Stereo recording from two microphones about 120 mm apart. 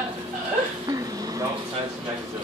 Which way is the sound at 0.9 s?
30° right (ahead or behind).